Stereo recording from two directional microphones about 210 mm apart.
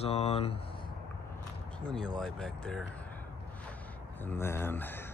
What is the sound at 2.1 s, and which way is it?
Speech, 5° left (ahead or behind).